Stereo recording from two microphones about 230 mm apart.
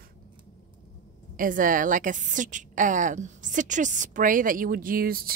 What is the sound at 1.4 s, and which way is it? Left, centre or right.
A woman's voice, right.